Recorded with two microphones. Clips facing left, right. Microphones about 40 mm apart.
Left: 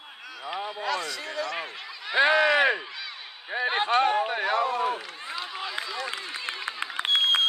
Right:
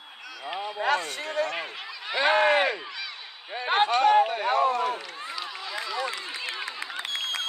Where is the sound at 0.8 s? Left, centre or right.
Right.